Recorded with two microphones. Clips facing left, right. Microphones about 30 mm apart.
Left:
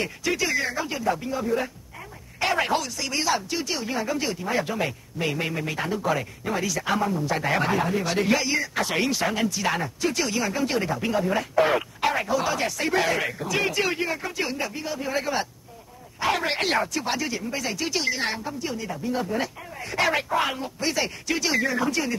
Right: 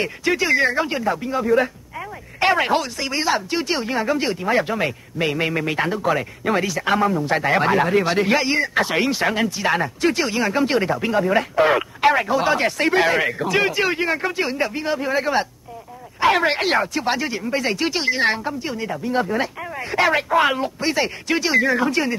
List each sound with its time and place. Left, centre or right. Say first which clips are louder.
0.5 s speech: right 8 dB; right
1.0 s speech: right 4 dB; right
1.4 s speech: right 8 dB; right
8.8 s speech: right 4 dB; right
13.7 s speech: right 5 dB; right
14.6 s speech: right 7 dB; right
16.2 s speech: right 8 dB; right
16.4 s speech: right 5 dB; centre; by 17.9 s right
17.9 s speech: right 6 dB; right
20.0 s speech: right 5 dB; centre
20.3 s speech: right 7 dB; right